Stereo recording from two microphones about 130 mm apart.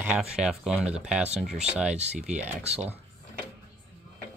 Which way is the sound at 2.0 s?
60° right (ahead or behind).